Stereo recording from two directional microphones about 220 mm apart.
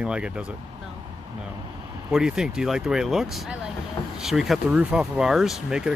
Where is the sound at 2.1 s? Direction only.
5° right (ahead or behind).